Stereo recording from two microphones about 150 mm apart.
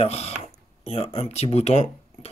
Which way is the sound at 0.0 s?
45° left (ahead or behind).